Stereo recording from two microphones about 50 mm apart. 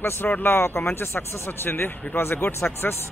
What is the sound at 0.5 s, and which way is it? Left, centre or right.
Speech, left.